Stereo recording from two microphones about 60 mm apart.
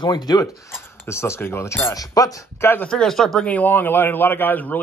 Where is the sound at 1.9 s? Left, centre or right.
Left.